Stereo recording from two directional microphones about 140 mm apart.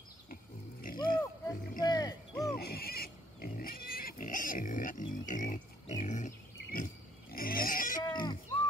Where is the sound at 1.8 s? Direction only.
30° left (ahead or behind).